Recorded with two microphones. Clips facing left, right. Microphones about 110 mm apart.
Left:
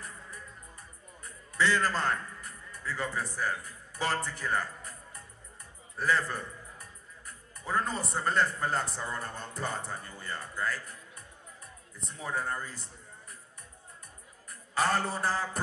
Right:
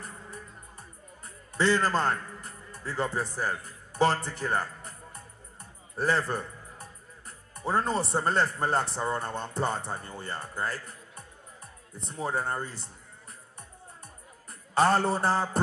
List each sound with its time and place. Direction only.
1.6 s a man's voice: 30° right (ahead or behind)
12.1 s speech: 35° right (ahead or behind)
14.5 s a man's voice: 30° right (ahead or behind)